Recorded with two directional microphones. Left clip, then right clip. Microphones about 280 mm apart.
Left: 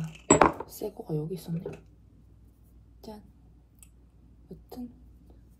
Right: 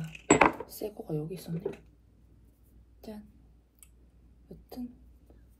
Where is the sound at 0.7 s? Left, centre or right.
Centre.